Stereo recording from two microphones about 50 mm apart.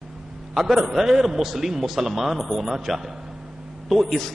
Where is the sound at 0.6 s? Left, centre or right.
Centre.